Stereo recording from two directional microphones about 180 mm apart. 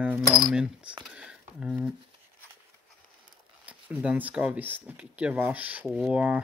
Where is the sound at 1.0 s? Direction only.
5° right (ahead or behind).